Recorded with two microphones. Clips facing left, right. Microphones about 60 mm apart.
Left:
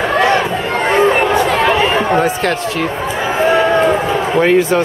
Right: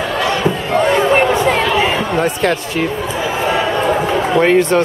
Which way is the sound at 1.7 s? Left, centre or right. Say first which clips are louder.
Left 2 dB; left.